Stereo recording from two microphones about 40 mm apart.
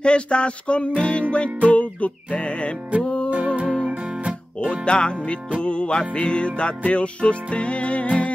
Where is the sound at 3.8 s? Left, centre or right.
Right.